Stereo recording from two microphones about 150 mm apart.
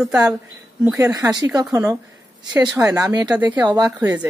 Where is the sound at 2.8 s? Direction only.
20° right (ahead or behind).